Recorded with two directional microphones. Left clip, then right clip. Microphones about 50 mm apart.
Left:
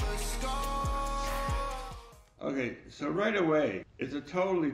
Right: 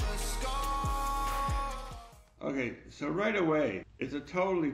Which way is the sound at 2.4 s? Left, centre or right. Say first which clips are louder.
Left 1 dB; right.